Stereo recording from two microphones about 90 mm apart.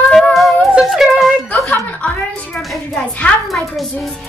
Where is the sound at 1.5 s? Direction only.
15° left (ahead or behind).